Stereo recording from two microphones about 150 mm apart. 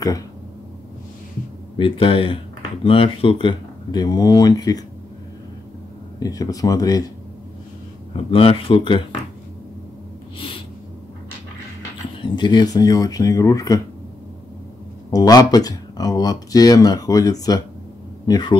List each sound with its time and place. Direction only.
1.8 s speech: 35° left (ahead or behind)
6.1 s speech: 25° left (ahead or behind)
8.3 s speech: 40° left (ahead or behind)
12.2 s speech: 30° left (ahead or behind)
15.0 s speech: 25° left (ahead or behind)